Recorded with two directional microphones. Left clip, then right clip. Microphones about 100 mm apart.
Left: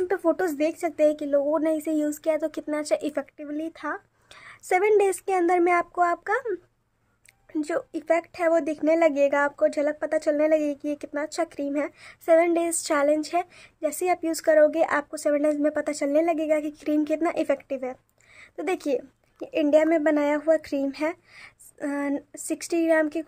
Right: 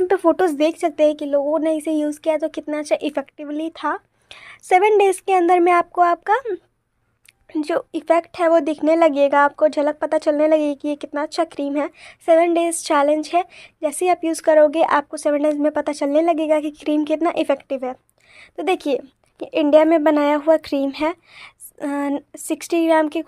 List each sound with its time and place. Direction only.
0.1 s speech: 30° right (ahead or behind)
1.0 s speech: 10° right (ahead or behind)
7.6 s speech: 25° right (ahead or behind)
12.0 s speech: 20° right (ahead or behind)